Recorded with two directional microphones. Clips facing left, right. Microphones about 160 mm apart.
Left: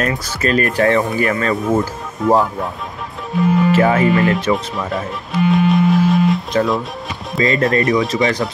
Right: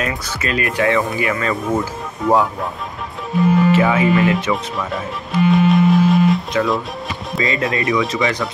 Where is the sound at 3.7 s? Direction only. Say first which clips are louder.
Left 2 dB; 40° left (ahead or behind).